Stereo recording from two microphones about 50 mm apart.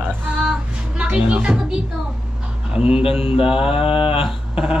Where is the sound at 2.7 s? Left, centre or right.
Right.